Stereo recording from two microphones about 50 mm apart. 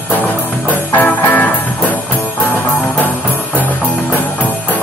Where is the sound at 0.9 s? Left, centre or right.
Left.